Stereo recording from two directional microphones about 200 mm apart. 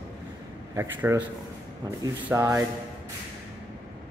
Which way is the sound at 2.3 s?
15° right (ahead or behind).